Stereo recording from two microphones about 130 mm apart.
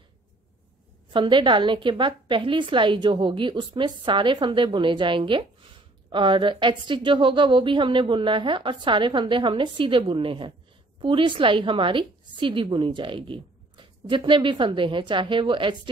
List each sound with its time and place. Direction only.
1.1 s a woman's voice: 40° right (ahead or behind)